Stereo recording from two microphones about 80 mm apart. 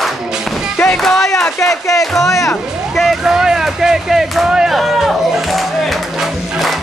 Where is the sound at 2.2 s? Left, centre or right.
Left.